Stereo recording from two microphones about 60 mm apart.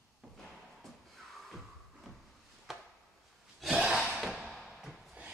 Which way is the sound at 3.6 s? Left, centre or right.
Centre.